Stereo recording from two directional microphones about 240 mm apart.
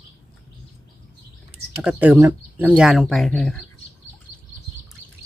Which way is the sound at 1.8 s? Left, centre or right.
Centre.